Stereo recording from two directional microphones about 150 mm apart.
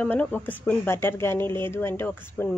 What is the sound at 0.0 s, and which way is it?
Speech, 10° left (ahead or behind).